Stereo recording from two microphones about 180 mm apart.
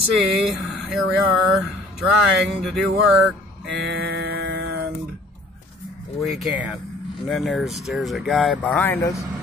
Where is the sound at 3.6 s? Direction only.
65° right (ahead or behind).